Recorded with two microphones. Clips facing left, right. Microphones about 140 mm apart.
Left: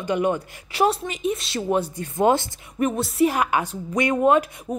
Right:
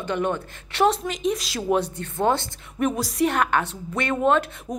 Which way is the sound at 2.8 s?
5° left (ahead or behind).